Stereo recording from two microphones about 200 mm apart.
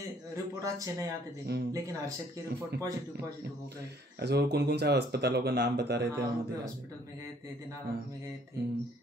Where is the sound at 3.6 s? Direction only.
55° right (ahead or behind).